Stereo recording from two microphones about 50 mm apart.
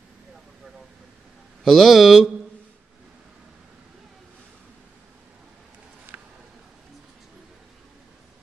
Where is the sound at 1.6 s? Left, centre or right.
Centre.